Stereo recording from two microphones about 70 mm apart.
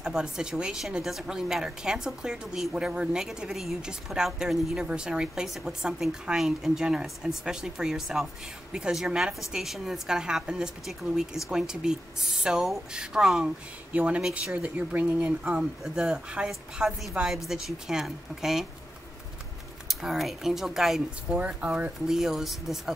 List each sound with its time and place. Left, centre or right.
0.0 s a woman's voice: centre
15.4 s a woman's voice: centre
19.9 s speech: centre
21.5 s a woman's voice: centre
22.0 s speech: centre